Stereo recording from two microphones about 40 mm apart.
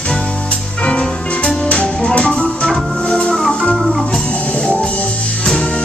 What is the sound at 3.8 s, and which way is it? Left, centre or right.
Organ, centre.